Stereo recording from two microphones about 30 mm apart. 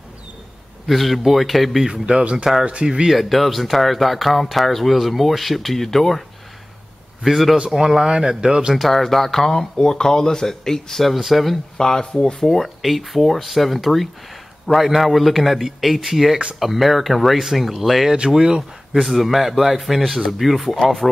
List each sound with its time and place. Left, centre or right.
0.8 s speech: centre
1.9 s speech: right
2.3 s speech: centre
2.6 s speech: right
3.1 s speech: centre
7.2 s speech: centre
7.7 s speech: centre
8.7 s speech: centre
11.1 s speech: centre
11.8 s speech: left
12.4 s speech: centre
15.0 s speech: centre